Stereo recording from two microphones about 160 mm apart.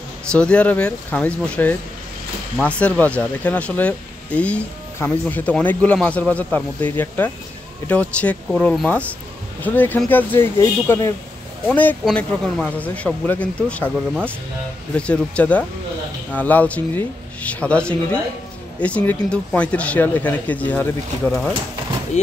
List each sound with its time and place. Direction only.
0.3 s speech: 5° left (ahead or behind)
15.0 s speech: 5° left (ahead or behind)
22.2 s speech: 45° left (ahead or behind)